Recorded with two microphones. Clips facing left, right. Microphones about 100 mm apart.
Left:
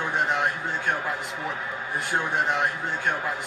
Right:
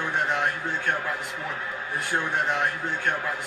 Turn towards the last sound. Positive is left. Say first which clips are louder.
# even
turn(degrees=5)  # may be behind; listen again after turning